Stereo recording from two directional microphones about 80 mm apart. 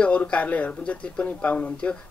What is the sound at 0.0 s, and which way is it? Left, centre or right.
Speech, centre.